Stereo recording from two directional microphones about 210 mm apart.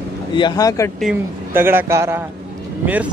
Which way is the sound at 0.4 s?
20° left (ahead or behind).